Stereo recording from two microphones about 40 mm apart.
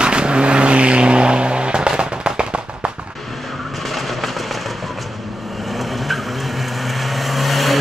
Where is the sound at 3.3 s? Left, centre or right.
Centre.